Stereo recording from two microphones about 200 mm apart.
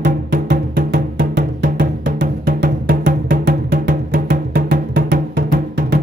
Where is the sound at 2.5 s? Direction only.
45° right (ahead or behind).